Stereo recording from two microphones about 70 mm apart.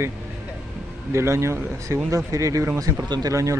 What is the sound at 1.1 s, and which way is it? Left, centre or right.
Speech, right.